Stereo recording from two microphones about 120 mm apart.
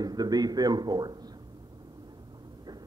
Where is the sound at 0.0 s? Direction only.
35° right (ahead or behind).